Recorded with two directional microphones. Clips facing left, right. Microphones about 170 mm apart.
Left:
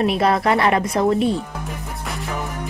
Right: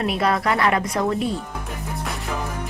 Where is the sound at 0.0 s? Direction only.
20° left (ahead or behind).